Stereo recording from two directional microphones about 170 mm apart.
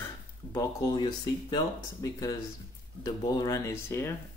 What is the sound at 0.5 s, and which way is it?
Speech, 25° left (ahead or behind).